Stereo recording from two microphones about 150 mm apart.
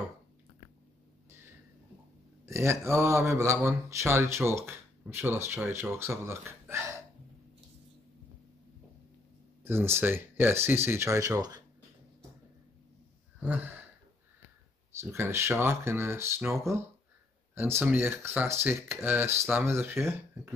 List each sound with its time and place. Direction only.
2.4 s speech: 15° right (ahead or behind)
9.7 s speech: 15° right (ahead or behind)
13.4 s gasp: 10° right (ahead or behind)
15.0 s speech: 15° right (ahead or behind)